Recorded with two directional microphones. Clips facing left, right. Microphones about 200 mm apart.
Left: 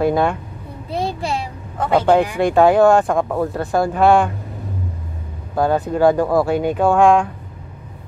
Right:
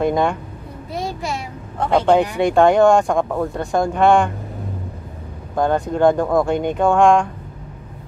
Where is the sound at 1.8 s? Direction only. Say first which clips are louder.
Even; 5° left (ahead or behind).